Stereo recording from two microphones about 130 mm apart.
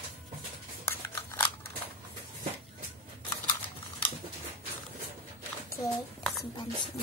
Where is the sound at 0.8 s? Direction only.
20° left (ahead or behind).